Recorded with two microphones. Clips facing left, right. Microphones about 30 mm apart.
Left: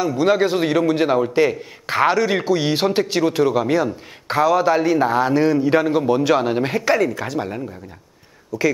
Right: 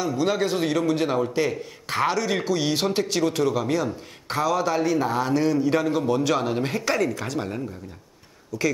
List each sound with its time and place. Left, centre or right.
0.0 s a man's voice: centre